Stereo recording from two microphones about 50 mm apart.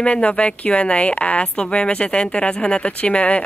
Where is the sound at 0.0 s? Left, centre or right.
Left.